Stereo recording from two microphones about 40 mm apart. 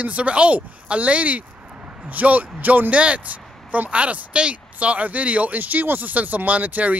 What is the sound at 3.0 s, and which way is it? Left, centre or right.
Speech, right.